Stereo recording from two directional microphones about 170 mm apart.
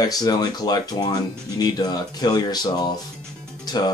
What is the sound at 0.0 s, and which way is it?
Speech, 20° left (ahead or behind).